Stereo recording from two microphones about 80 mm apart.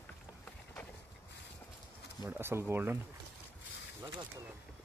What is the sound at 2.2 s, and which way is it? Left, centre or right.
Speech, right.